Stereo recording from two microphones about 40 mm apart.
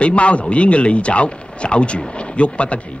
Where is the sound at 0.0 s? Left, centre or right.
Left.